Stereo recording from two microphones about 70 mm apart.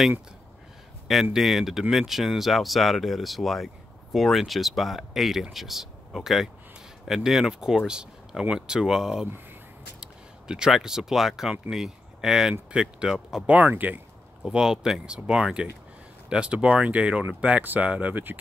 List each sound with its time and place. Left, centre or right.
1.3 s speech: centre
13.5 s speech: right
14.4 s speech: centre; by 18.4 s right